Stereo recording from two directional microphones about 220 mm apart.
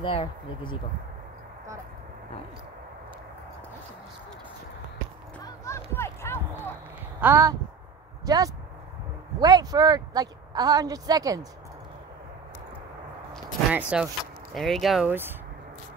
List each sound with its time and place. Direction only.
0.0 s speech: 25° left (ahead or behind)
5.4 s music: 10° left (ahead or behind)
7.2 s a woman's voice: 10° right (ahead or behind)
13.3 s a sound: 5° right (ahead or behind)
14.5 s speech: centre (ahead or behind)